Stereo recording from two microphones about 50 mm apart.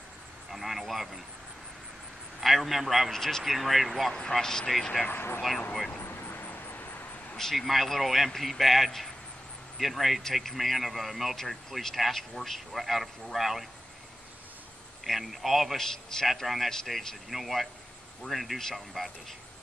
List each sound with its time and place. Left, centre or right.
0.5 s a man's voice: centre
2.4 s a man's voice: centre
3.1 s speech: centre
3.5 s a man's voice: centre
5.0 s speech: left
6.0 s vehicle: left
7.3 s a man's voice: centre
15.0 s a man's voice: centre
16.3 s a man's voice: centre
18.6 s speech: centre